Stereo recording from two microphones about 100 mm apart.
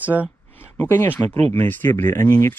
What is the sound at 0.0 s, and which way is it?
Speech, 15° right (ahead or behind).